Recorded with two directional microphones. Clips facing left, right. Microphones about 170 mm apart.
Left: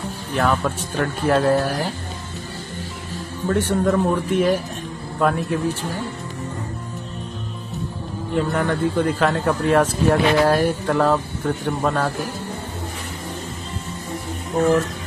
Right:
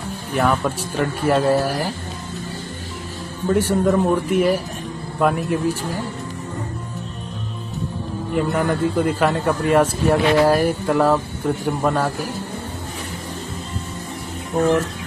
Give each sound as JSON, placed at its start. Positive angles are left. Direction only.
{"t": 0.3, "sound": "speech", "side_deg": -5}
{"t": 3.4, "sound": "a man's voice", "side_deg": -10}
{"t": 8.4, "sound": "a man's voice", "side_deg": -5}